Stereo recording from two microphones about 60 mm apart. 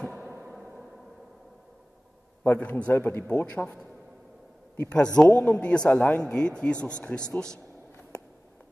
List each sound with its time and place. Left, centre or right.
0.2 s a sound: right
0.5 s a sound: centre
2.4 s a man's voice: left
5.6 s speech: centre
5.9 s a man's voice: left
6.2 s speech: centre